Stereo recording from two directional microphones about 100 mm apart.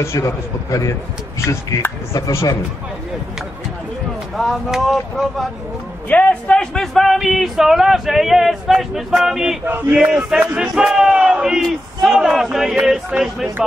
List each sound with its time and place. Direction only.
0.0 s speech: 30° left (ahead or behind)
4.4 s speech: 5° right (ahead or behind)
6.0 s a man's voice: 15° left (ahead or behind); by 13.5 s 5° right (ahead or behind)